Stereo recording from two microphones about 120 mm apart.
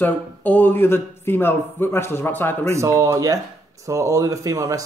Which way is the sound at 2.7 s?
25° right (ahead or behind).